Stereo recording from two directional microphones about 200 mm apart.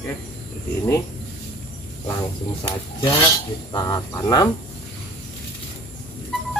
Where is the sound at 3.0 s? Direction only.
20° left (ahead or behind).